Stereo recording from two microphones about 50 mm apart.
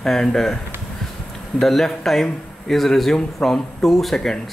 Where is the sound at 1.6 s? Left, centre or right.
Centre.